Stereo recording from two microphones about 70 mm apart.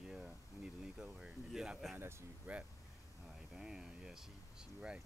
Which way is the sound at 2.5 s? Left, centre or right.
Centre.